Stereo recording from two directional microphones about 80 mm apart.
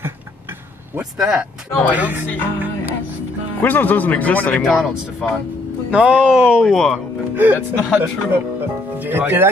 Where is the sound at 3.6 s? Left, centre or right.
Left.